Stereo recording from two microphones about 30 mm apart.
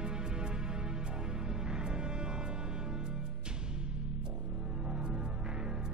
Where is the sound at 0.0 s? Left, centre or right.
Right.